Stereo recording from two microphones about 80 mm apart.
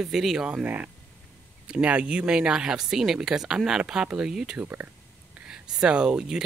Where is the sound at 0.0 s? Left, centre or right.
Centre.